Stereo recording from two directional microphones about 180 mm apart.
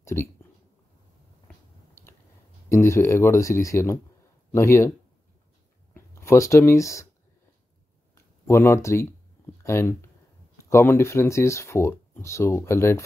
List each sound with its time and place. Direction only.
0.0 s speech: 15° left (ahead or behind)
2.0 s a sound: 15° left (ahead or behind)
2.7 s speech: 15° left (ahead or behind)
5.9 s speech: 15° left (ahead or behind)
8.1 s a sound: 15° left (ahead or behind)
9.6 s speech: 15° left (ahead or behind)